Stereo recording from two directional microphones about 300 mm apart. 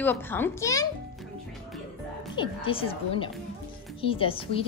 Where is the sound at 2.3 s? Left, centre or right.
Centre.